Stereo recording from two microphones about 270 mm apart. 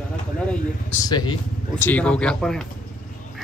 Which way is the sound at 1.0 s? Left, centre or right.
Centre.